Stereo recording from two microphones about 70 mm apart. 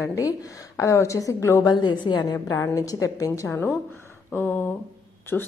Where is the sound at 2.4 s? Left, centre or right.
Left.